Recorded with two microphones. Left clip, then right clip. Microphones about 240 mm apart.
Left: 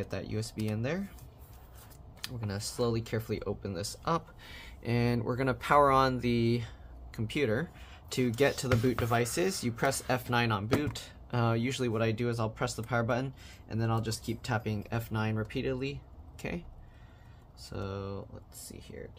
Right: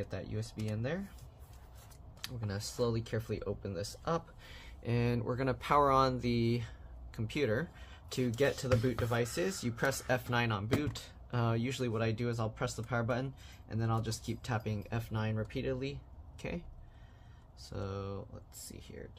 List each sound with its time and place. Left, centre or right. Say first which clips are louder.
0.0 s speech: left 5 dB; centre
2.2 s speech: left 3 dB; centre
17.6 s speech: left 2 dB; centre